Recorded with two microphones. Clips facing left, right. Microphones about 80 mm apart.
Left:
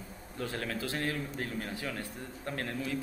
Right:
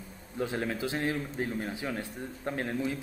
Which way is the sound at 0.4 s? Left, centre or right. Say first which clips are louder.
Right 4 dB; centre.